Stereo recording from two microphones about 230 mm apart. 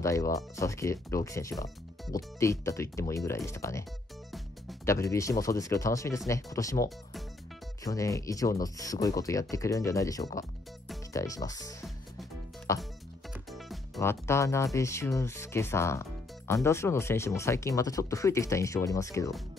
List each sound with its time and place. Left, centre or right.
0.0 s speech: centre
4.8 s speech: centre
13.3 s music: centre
13.9 s speech: centre